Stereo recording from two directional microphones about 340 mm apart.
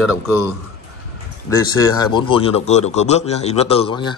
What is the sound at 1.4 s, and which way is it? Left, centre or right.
A man's voice, centre.